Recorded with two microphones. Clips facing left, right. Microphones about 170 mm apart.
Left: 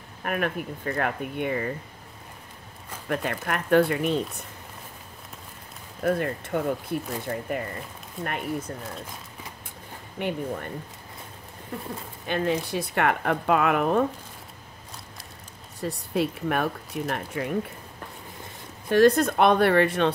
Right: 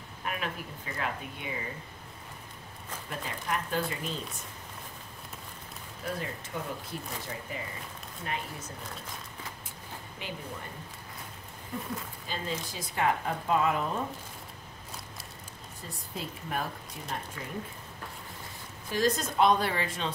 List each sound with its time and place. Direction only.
0.2 s speech: 55° left (ahead or behind)
3.1 s speech: 65° left (ahead or behind)
6.0 s speech: 60° left (ahead or behind)
10.1 s speech: 60° left (ahead or behind)
12.3 s speech: 65° left (ahead or behind)
15.8 s speech: 70° left (ahead or behind)
18.9 s speech: 60° left (ahead or behind)